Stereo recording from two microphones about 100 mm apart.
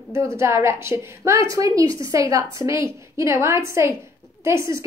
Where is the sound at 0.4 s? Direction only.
25° right (ahead or behind).